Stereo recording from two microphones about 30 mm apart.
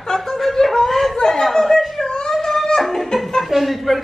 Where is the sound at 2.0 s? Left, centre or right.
Left.